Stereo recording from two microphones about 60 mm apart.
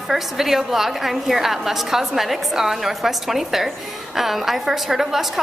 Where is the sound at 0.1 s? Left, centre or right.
Centre.